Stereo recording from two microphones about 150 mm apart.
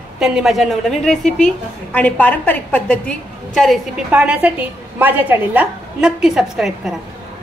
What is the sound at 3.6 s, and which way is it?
A woman's voice, 5° right (ahead or behind).